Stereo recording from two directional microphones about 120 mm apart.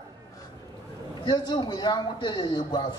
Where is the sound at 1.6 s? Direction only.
35° left (ahead or behind).